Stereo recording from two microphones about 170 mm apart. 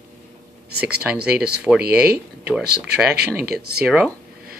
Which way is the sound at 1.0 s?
5° right (ahead or behind).